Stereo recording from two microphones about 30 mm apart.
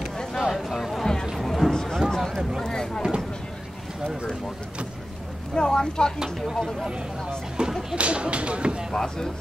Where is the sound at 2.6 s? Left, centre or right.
Left.